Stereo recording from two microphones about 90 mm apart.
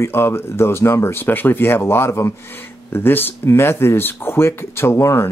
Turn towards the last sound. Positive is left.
turn(degrees=35)  # may be behind; listen again after turning